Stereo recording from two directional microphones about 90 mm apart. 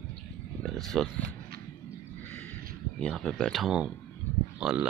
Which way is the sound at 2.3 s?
20° left (ahead or behind).